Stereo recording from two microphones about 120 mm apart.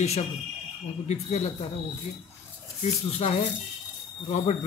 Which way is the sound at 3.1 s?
60° left (ahead or behind).